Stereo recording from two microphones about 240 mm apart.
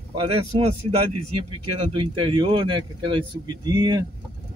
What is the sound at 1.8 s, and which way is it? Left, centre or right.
Speech, right.